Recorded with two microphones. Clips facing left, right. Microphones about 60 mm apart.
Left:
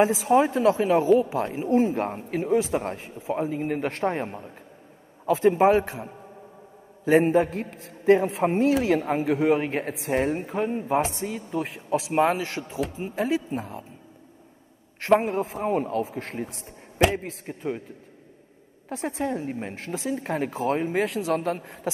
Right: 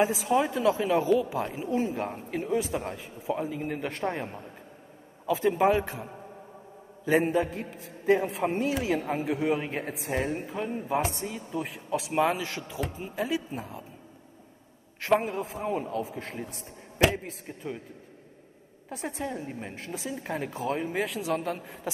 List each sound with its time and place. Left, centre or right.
0.0 s a woman's voice: left
7.1 s a woman's voice: left
7.4 s a woman's voice: left
15.1 s a man's voice: left
18.9 s a woman's voice: left